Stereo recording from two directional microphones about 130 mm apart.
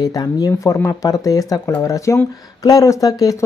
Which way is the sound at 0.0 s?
30° left (ahead or behind).